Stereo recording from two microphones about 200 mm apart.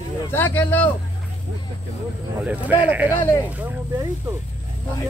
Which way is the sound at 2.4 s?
10° right (ahead or behind).